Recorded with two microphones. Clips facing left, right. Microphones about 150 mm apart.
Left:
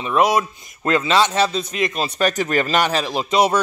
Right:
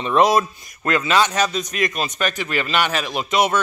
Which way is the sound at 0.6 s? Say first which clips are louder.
Left 2 dB; 25° left (ahead or behind).